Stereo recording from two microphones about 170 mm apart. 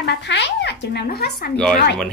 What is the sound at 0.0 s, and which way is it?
Speech, 90° left.